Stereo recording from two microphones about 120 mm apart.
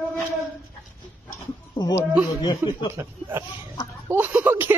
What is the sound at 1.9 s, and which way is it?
Speech, 25° left (ahead or behind).